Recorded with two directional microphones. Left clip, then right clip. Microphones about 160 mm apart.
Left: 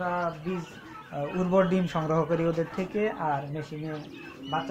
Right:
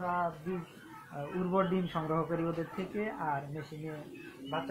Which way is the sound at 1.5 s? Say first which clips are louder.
Left 7 dB; 80° left.